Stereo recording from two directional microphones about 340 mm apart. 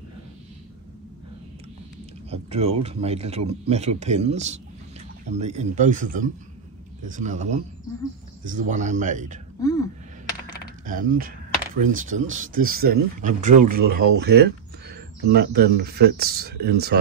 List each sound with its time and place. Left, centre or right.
2.3 s a man's voice: centre
9.6 s speech: centre
10.9 s speech: right